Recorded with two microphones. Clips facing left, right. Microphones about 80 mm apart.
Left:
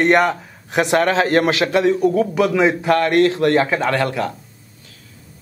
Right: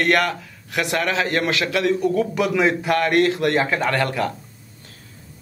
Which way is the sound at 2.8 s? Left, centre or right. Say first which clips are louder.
Left 4 dB; centre.